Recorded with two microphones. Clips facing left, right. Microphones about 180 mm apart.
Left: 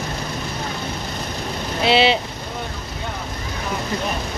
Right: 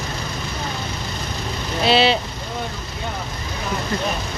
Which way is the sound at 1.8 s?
20° left (ahead or behind).